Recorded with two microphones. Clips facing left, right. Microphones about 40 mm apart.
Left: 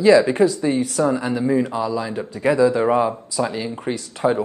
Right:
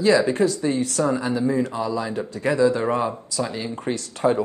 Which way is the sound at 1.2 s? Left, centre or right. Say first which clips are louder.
Left 2 dB; left.